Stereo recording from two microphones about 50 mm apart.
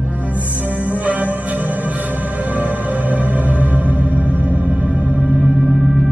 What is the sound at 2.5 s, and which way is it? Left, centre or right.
Music, right.